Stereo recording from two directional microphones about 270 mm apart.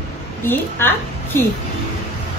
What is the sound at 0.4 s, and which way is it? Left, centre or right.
A woman's voice, centre.